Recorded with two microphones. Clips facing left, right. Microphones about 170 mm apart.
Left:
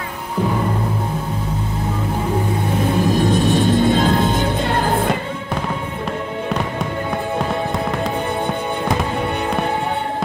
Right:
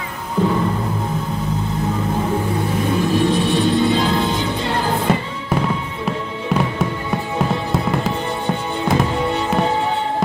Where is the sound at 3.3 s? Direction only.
45° left (ahead or behind).